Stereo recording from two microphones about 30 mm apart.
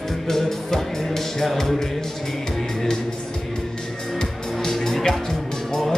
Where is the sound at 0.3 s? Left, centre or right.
Centre.